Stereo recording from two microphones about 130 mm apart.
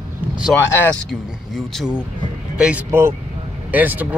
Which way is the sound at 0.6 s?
15° left (ahead or behind).